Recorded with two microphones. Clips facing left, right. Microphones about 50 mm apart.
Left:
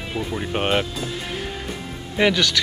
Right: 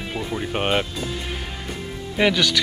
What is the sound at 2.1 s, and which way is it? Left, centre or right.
Speech, centre.